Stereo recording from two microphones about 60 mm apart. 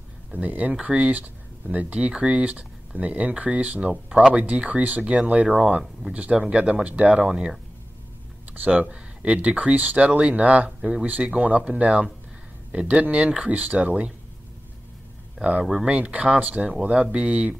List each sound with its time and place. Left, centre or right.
0.3 s speech: right
3.9 s speech: centre
4.3 s speech: right
6.6 s speech: right
8.7 s speech: centre
10.8 s speech: centre
15.6 s speech: centre